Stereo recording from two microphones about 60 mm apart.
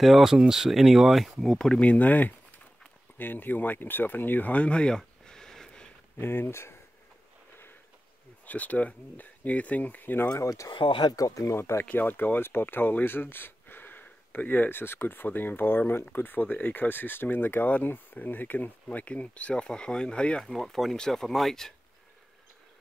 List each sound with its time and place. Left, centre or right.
0.0 s speech: centre
1.8 s speech: left; by 5.9 s centre
6.1 s speech: left
8.5 s speech: left
10.3 s speech: left
11.5 s speech: left
11.8 s speech: left
16.1 s speech: left
20.5 s speech: centre